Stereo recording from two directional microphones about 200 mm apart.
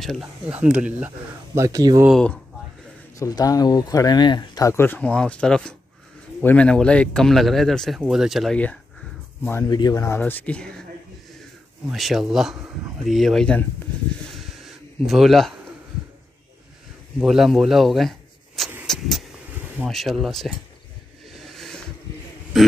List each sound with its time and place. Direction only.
0.0 s speech: centre (ahead or behind); by 2.0 s 15° right (ahead or behind)
2.0 s speech: 5° left (ahead or behind)
3.2 s speech: 20° left (ahead or behind)
11.9 s speech: centre (ahead or behind)
14.3 s a sound: centre (ahead or behind)
17.2 s speech: centre (ahead or behind)
18.9 s vehicle: centre (ahead or behind)
19.8 s speech: centre (ahead or behind)
21.3 s a sound: centre (ahead or behind)